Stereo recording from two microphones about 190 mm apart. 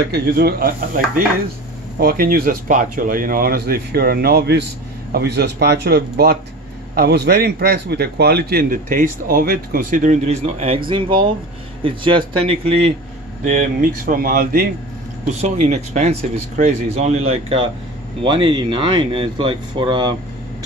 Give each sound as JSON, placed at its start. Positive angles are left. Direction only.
{"t": 0.1, "sound": "a man's voice", "side_deg": -55}
{"t": 13.4, "sound": "a man's voice", "side_deg": -45}
{"t": 15.4, "sound": "speech", "side_deg": -40}